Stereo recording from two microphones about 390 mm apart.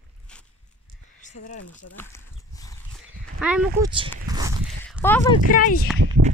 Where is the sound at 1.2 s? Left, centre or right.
Centre.